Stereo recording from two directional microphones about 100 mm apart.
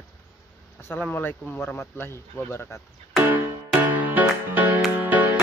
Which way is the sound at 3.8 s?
15° right (ahead or behind).